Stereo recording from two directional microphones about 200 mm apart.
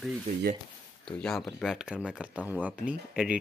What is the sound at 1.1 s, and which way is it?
Speech, 5° left (ahead or behind).